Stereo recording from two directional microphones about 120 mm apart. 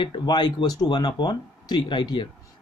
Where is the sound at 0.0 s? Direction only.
40° left (ahead or behind).